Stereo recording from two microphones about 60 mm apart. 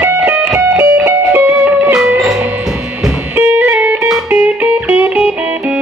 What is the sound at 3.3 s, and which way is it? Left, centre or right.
Music, right.